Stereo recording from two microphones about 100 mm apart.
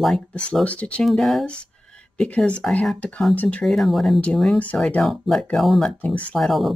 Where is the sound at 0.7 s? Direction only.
15° left (ahead or behind).